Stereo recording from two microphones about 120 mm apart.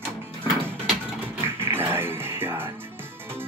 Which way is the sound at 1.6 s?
20° right (ahead or behind).